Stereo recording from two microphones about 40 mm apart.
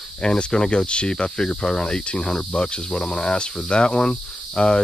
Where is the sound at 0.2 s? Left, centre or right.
Centre.